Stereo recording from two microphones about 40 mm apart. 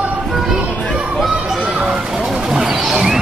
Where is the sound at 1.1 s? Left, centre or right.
Centre.